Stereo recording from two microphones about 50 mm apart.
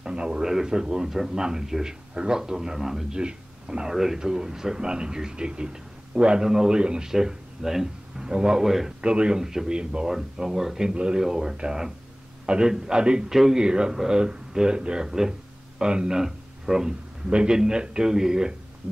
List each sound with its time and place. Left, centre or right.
0.0 s a man's voice: centre
3.2 s speech: centre
3.9 s a man's voice: centre
9.0 s a man's voice: centre